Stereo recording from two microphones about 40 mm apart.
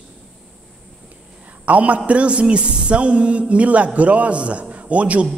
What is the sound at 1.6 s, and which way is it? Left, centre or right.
A man's voice, right.